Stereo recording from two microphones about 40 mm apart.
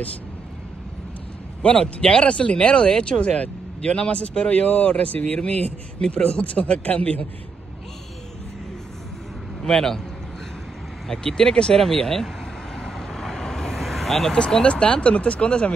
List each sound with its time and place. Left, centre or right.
1.6 s speech: left
4.6 s speech: left
5.4 s speech: left
9.6 s a man's voice: centre
11.1 s speech: centre
12.7 s vehicle: centre
14.3 s speech: left